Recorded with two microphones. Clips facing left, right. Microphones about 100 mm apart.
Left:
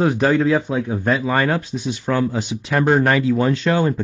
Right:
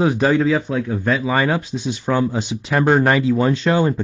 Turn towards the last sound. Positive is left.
turn(degrees=-15)  # may be behind; listen again after turning